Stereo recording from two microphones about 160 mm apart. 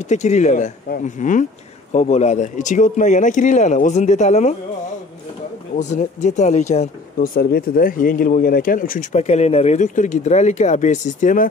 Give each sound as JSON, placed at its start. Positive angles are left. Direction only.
{"t": 0.1, "sound": "speech", "side_deg": 45}
{"t": 5.8, "sound": "speech", "side_deg": 50}
{"t": 7.3, "sound": "speech", "side_deg": 65}
{"t": 9.2, "sound": "speech", "side_deg": 45}